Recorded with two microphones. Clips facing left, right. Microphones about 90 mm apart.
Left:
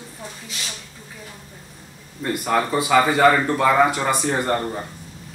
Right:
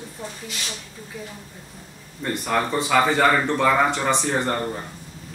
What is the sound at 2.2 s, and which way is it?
Speech, 5° left (ahead or behind).